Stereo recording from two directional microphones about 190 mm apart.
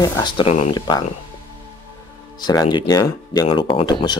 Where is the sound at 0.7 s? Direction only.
20° left (ahead or behind).